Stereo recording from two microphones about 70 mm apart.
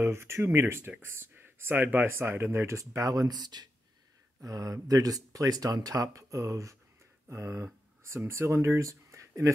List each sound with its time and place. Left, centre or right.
0.0 s speech: right
4.4 s speech: right